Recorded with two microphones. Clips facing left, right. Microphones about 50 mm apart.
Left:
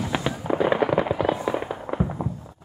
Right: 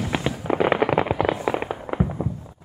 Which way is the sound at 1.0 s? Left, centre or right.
Right.